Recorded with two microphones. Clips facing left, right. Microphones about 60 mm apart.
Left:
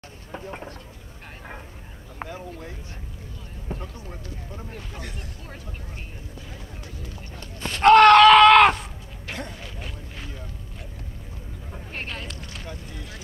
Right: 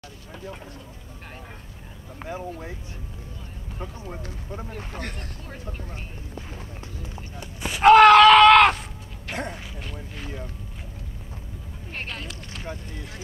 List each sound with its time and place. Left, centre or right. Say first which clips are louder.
0.3 s speech: left 3 dB; left
2.2 s speech: right 1 dB; left
3.8 s speech: right 3 dB; right
7.3 s a sound: right 1 dB; centre
9.8 s vehicle: right 1 dB; centre
11.9 s speech: even; centre